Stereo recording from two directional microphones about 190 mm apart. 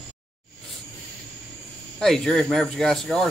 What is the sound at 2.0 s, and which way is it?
Cricket, 5° left (ahead or behind).